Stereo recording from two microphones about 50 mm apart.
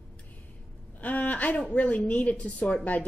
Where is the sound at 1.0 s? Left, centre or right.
Left.